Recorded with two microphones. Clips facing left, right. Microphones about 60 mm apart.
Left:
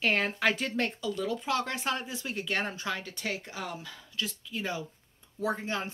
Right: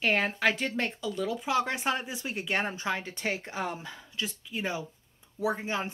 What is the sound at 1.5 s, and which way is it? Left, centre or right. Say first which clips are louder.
A woman's voice: right 4 dB; centre.